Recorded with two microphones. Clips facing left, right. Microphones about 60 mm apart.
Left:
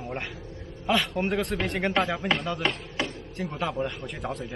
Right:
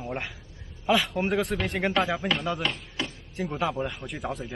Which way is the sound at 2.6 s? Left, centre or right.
Left.